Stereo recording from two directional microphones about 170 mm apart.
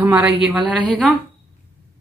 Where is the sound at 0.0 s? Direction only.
5° right (ahead or behind).